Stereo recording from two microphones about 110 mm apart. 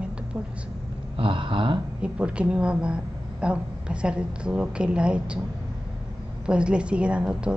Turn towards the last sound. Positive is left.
turn(degrees=-10)  # may be behind; listen again after turning